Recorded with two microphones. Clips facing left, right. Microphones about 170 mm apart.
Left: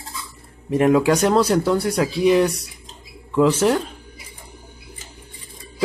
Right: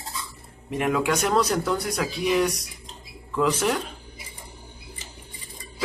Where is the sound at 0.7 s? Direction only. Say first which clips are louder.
Left 8 dB; 35° left (ahead or behind).